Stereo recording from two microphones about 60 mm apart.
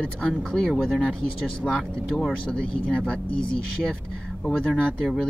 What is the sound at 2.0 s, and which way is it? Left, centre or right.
Speech, centre.